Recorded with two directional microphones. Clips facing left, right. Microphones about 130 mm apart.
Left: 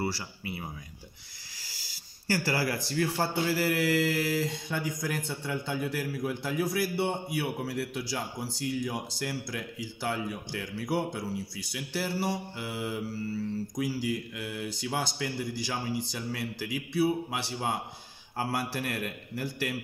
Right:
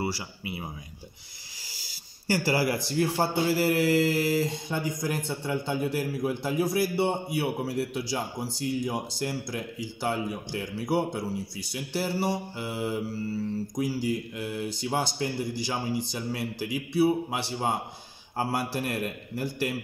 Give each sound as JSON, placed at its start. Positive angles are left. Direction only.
{"t": 0.0, "sound": "speech", "side_deg": -15}
{"t": 2.2, "sound": "a man's voice", "side_deg": -20}
{"t": 15.5, "sound": "a man's voice", "side_deg": -25}